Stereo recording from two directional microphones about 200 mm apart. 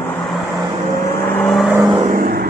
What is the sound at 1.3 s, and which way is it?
Vehicle, centre (ahead or behind).